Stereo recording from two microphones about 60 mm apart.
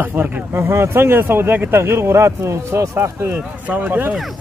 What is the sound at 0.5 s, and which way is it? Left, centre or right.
Speech, right.